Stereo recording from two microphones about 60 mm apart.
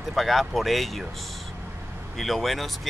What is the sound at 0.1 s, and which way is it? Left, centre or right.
Speech, centre.